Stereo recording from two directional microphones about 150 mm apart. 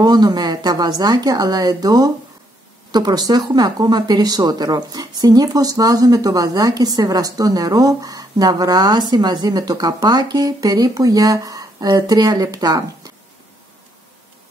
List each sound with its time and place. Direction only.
0.0 s speech: 25° right (ahead or behind)